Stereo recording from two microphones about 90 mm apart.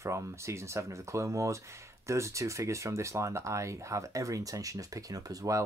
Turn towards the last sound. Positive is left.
turn(degrees=-40)  # may be behind; listen again after turning